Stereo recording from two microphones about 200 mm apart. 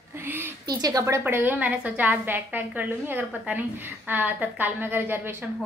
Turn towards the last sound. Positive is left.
turn(degrees=-10)  # may be behind; listen again after turning